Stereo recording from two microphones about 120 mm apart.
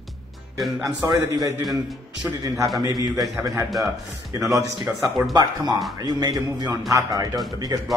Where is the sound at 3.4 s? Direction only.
25° right (ahead or behind).